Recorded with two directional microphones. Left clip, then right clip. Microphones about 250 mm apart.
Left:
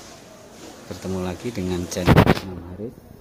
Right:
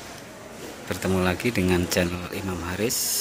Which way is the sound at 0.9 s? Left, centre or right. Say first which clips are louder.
Right 5 dB; centre.